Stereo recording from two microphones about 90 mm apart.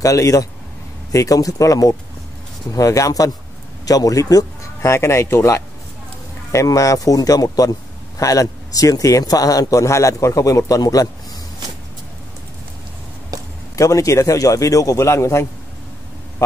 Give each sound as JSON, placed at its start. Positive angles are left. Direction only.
{"t": 0.0, "sound": "a man's voice", "side_deg": 40}
{"t": 4.8, "sound": "a man's voice", "side_deg": 30}
{"t": 13.3, "sound": "a sound", "side_deg": -40}
{"t": 13.7, "sound": "a man's voice", "side_deg": 35}